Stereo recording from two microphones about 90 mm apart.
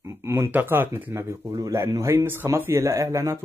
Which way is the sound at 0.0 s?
30° right (ahead or behind).